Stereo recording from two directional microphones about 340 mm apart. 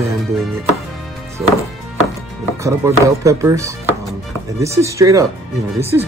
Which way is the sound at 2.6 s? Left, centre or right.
Centre.